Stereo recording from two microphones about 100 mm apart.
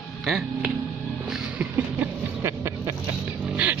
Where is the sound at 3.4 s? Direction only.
15° right (ahead or behind).